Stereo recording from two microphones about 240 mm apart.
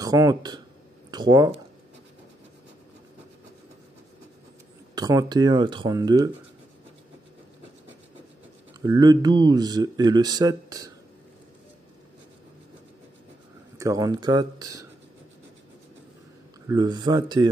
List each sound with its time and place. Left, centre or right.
0.0 s speech: centre
4.9 s speech: centre
8.8 s speech: centre
13.7 s speech: centre
16.6 s speech: centre